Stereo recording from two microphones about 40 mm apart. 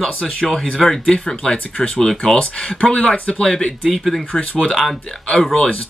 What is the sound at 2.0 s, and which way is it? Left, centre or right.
Speech, centre.